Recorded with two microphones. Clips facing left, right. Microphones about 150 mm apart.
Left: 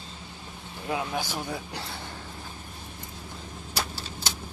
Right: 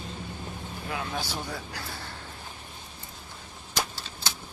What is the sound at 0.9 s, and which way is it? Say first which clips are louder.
Speech: left 4 dB; 15° left (ahead or behind).